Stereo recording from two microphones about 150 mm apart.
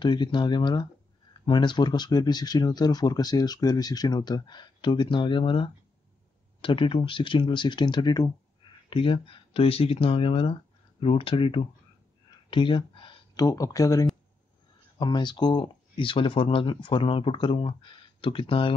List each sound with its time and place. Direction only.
0.0 s speech: 30° left (ahead or behind)